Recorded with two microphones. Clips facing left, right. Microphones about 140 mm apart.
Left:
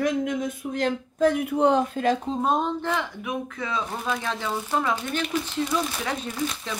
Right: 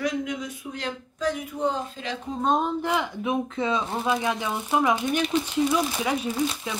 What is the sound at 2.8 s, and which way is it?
Speech, 15° right (ahead or behind).